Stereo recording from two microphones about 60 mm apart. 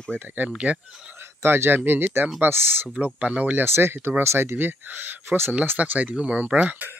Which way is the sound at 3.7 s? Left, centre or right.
Right.